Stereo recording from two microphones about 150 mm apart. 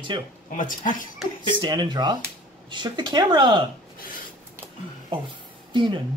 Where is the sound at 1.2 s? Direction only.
Centre (ahead or behind).